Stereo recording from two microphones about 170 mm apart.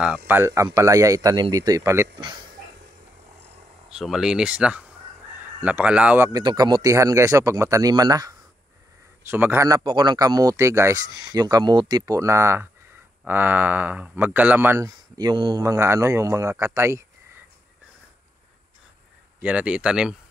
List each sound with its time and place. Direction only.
0.3 s speech: 15° right (ahead or behind)
3.9 s speech: centre (ahead or behind)
6.4 s speech: 25° right (ahead or behind)
19.4 s speech: 5° right (ahead or behind)